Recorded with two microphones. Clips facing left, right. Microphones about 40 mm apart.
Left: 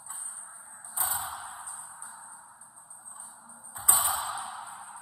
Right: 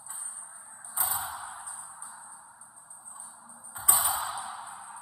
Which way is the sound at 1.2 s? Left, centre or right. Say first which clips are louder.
Even; left.